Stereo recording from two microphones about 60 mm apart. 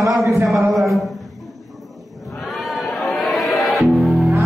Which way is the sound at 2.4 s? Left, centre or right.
Centre.